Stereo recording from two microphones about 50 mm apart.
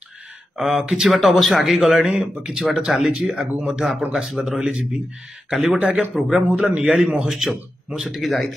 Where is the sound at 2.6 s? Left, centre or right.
Centre.